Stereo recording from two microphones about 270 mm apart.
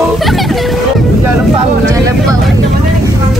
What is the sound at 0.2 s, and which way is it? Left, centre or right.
Music, centre.